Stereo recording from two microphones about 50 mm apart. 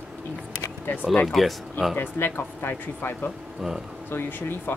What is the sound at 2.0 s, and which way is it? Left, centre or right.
Speech, left.